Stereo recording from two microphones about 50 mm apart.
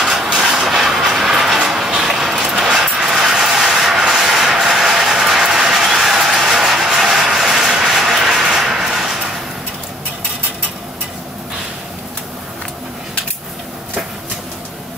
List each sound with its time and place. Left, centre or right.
0.0 s train: centre
2.0 s vehicle: centre
3.1 s rub: centre